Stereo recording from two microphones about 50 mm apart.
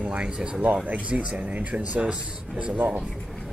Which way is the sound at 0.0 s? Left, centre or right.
Right.